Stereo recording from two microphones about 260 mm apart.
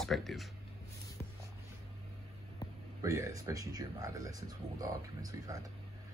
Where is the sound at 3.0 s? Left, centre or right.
Centre.